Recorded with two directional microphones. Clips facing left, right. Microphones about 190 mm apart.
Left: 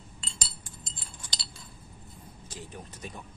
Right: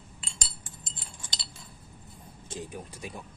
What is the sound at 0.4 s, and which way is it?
Chink, 20° right (ahead or behind).